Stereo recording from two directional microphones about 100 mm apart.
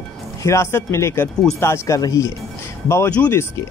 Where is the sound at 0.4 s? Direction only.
30° left (ahead or behind).